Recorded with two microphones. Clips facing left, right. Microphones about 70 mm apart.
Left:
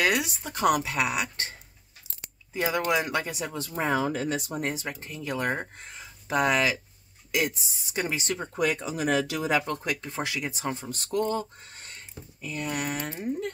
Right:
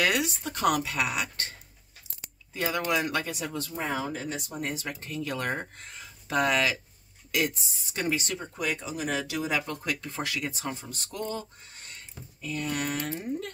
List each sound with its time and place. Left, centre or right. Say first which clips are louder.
0.0 s speech: left 1 dB; centre
2.5 s speech: left 2 dB; centre
3.7 s speech: left 7 dB; left
4.5 s speech: left 3 dB; left
4.7 s speech: right 1 dB; centre
8.5 s speech: left 5 dB; left
9.8 s speech: left 1 dB; left
10.8 s speech: left 8 dB; left
12.4 s speech: even; centre